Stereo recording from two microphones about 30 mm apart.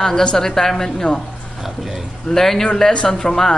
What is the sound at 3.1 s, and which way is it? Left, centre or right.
Speech, centre.